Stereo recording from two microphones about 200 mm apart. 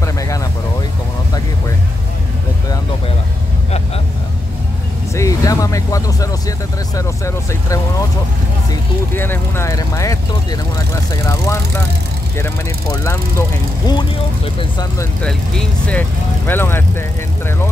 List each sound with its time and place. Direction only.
5.1 s speech: 15° left (ahead or behind)
9.1 s speech: 10° left (ahead or behind)
15.2 s speech: 5° left (ahead or behind)